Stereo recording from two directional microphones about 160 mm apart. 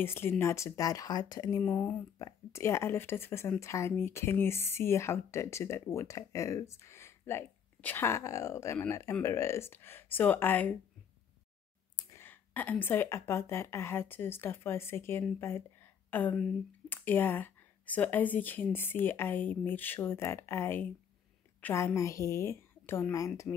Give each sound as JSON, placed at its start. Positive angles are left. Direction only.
{"t": 0.0, "sound": "speech", "side_deg": 15}
{"t": 1.6, "sound": "speech", "side_deg": 10}
{"t": 12.0, "sound": "speech", "side_deg": 15}
{"t": 15.4, "sound": "a sound", "side_deg": 15}
{"t": 16.9, "sound": "speech", "side_deg": 10}